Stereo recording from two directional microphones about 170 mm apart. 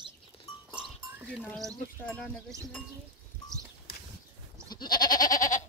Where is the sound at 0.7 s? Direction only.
5° right (ahead or behind).